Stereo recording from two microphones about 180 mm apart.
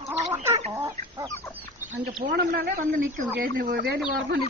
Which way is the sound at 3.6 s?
55° right (ahead or behind).